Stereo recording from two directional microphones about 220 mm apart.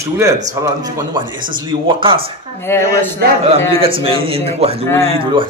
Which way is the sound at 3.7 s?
25° right (ahead or behind).